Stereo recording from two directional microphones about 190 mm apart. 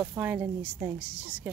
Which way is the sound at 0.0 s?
10° right (ahead or behind).